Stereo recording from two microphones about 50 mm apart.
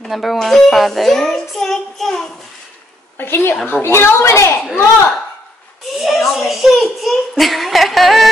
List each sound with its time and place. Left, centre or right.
0.1 s a child's voice: centre
3.2 s a woman's voice: left
5.9 s a child's voice: centre